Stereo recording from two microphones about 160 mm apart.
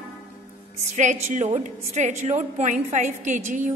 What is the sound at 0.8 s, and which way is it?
A woman's voice, 45° right (ahead or behind).